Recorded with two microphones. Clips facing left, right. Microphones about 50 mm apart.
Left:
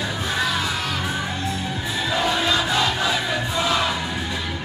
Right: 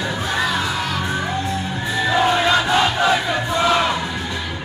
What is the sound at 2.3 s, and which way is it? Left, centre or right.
Crowd, right.